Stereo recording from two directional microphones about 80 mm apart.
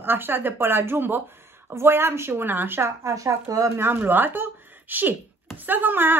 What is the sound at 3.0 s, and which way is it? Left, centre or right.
Speech, right.